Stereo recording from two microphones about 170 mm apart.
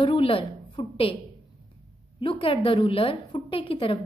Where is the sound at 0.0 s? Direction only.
30° left (ahead or behind).